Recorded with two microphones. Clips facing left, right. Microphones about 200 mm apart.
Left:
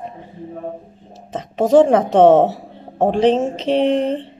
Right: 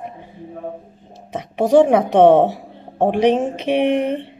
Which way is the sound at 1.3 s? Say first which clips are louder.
Left 1 dB; 10° right (ahead or behind).